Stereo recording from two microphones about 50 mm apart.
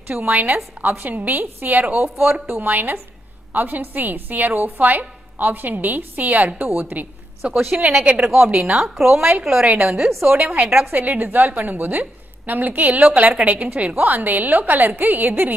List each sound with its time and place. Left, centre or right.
0.3 s a woman's voice: right
2.7 s a woman's voice: right
7.5 s speech: centre
10.2 s a woman's voice: right